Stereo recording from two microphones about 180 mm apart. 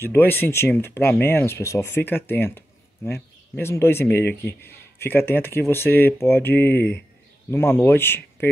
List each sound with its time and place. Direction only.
0.0 s speech: 10° left (ahead or behind)